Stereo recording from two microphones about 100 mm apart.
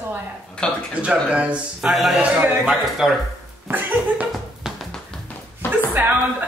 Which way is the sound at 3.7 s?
20° right (ahead or behind).